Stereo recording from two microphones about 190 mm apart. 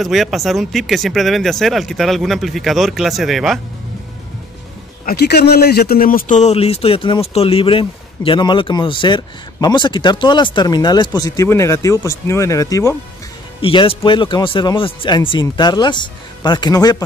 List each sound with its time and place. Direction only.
0.0 s speech: centre (ahead or behind)
5.0 s a man's voice: 60° left (ahead or behind); by 12.9 s 15° left (ahead or behind)
13.6 s a man's voice: 30° left (ahead or behind)